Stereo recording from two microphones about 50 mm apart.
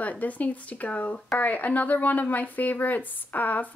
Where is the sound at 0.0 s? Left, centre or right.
Left.